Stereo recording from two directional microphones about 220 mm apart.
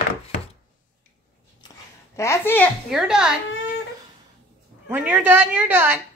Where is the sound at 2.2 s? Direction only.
10° left (ahead or behind).